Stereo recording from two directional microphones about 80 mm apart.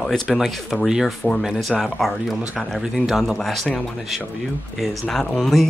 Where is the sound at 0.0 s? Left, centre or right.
Centre.